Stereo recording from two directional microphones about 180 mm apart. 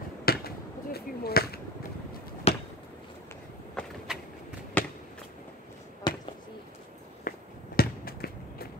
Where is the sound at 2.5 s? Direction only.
35° left (ahead or behind).